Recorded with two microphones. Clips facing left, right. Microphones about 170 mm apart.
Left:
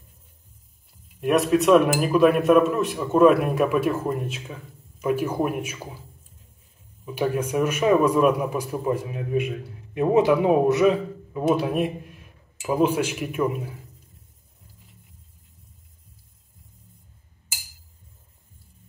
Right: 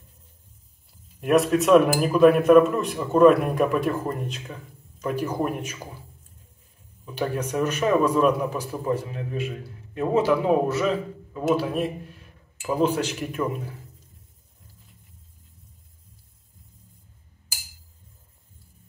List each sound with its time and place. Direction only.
1.2 s a man's voice: centre (ahead or behind)
7.1 s a man's voice: 10° left (ahead or behind)